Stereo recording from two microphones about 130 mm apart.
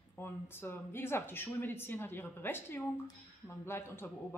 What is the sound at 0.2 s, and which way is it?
Speech, 15° left (ahead or behind).